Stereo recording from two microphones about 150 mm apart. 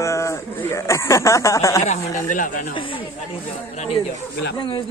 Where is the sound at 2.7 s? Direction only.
35° left (ahead or behind).